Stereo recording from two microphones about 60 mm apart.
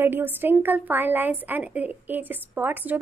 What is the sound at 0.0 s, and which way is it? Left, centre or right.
A woman's voice, right.